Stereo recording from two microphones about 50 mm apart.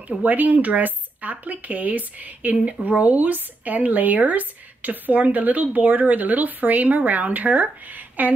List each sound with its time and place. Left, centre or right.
0.1 s a woman's voice: right